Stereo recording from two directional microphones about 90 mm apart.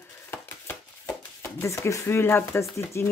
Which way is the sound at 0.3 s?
20° left (ahead or behind).